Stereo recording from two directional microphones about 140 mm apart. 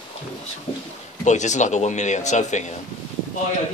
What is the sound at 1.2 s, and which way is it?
Speech, 60° left (ahead or behind).